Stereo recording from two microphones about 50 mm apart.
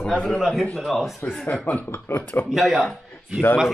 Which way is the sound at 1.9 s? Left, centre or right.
Left.